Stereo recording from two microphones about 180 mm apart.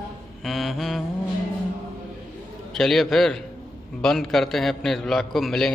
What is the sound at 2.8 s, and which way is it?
A man's voice, centre (ahead or behind).